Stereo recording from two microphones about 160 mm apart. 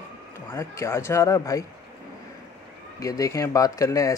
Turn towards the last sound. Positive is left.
turn(degrees=20)  # may be behind; listen again after turning